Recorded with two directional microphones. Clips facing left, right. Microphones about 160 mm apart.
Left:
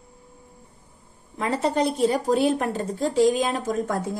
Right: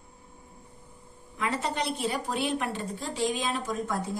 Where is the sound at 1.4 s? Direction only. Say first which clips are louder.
Left 7 dB; 40° left (ahead or behind).